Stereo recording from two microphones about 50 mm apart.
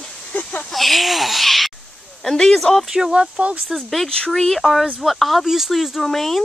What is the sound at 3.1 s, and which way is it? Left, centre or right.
Speech, centre.